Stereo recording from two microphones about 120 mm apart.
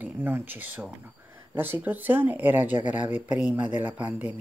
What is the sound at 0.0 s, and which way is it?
Speech, 15° right (ahead or behind).